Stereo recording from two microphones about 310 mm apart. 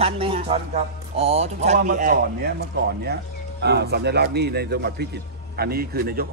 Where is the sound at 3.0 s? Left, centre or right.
Right.